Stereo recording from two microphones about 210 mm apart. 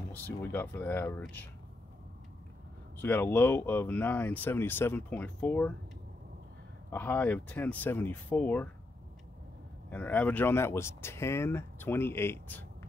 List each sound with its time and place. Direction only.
0.1 s speech: 10° left (ahead or behind)
3.0 s speech: 10° left (ahead or behind)
6.9 s speech: 10° left (ahead or behind)
9.8 s speech: 10° left (ahead or behind)